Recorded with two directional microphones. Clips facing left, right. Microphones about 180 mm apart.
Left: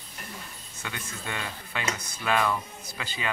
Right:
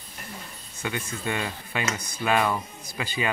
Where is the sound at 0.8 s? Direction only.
15° right (ahead or behind).